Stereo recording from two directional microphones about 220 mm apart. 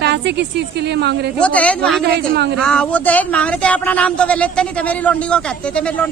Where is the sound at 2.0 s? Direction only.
50° right (ahead or behind).